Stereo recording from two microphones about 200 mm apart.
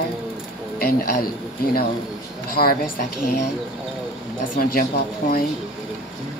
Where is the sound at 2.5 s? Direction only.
45° left (ahead or behind).